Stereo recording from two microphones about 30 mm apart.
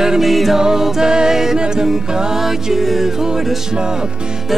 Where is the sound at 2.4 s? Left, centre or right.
Centre.